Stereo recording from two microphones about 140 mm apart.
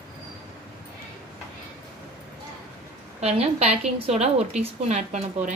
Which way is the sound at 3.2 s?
50° right (ahead or behind).